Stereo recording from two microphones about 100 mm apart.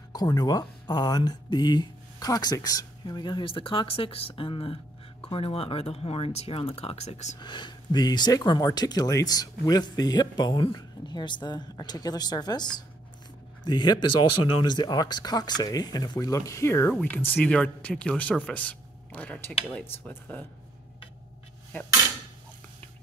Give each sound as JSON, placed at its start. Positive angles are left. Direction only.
{"t": 0.1, "sound": "speech", "side_deg": 40}
{"t": 7.3, "sound": "speech", "side_deg": 50}